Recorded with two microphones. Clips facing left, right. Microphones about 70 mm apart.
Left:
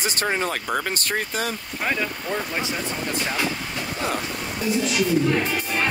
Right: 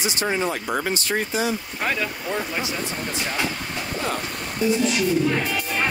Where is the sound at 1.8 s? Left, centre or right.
Centre.